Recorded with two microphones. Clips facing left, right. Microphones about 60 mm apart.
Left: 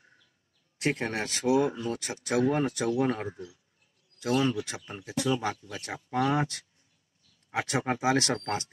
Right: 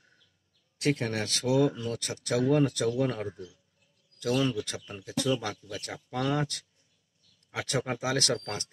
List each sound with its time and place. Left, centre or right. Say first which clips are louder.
0.0 s bird: left 3 dB; left
0.7 s speech: right 1 dB; left